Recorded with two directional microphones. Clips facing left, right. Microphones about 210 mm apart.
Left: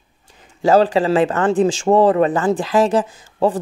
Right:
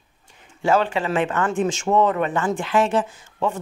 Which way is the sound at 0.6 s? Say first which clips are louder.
Left 6 dB; 35° left (ahead or behind).